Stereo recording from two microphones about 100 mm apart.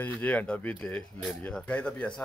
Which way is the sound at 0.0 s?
15° left (ahead or behind).